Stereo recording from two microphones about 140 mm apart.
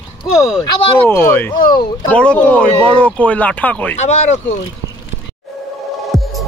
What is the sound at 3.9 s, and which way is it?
Speech, 55° left (ahead or behind).